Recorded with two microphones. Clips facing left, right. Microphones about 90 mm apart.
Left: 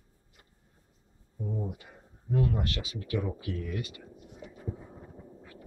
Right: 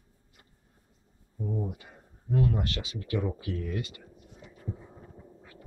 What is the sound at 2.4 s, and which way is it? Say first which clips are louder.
Speech: right 1 dB; centre (ahead or behind).